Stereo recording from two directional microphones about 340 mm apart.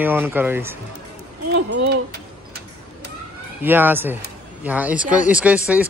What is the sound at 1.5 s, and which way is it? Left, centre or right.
Speech, right.